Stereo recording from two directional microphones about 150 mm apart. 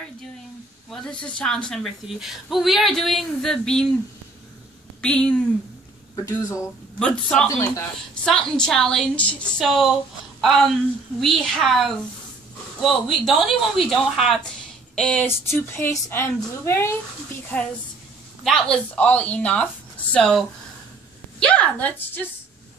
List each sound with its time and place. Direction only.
0.8 s a woman's voice: 5° left (ahead or behind)
5.0 s a woman's voice: 5° left (ahead or behind)
6.1 s speech: 20° left (ahead or behind)
7.0 s a woman's voice: 5° left (ahead or behind)
7.4 s speech: 20° left (ahead or behind)
8.1 s a woman's voice: 5° left (ahead or behind)
11.1 s a woman's voice: centre (ahead or behind); by 16.9 s 15° left (ahead or behind)
18.4 s a woman's voice: 5° left (ahead or behind)